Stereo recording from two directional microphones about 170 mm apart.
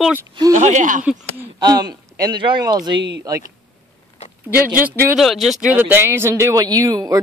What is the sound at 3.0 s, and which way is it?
Speech, 90° right.